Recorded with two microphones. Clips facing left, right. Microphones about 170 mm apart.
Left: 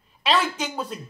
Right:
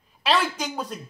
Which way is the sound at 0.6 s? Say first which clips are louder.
Left 1 dB; 5° left (ahead or behind).